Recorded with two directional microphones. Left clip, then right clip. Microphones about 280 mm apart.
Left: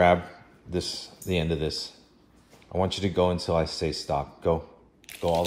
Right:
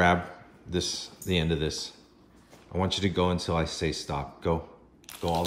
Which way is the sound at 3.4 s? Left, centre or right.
Right.